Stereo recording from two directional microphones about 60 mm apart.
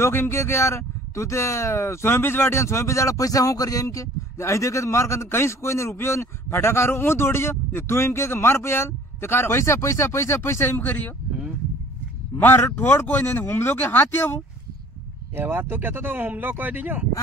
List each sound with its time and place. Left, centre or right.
0.0 s speech: left
12.4 s speech: left
15.3 s speech: right